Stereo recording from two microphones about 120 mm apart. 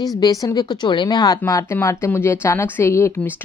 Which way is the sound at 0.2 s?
30° left (ahead or behind).